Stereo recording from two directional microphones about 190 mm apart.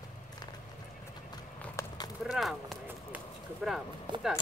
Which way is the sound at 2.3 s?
Centre (ahead or behind).